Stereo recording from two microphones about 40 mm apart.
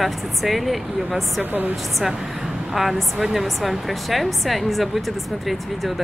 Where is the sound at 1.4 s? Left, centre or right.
Right.